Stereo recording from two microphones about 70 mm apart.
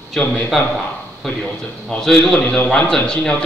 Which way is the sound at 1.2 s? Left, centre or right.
Centre.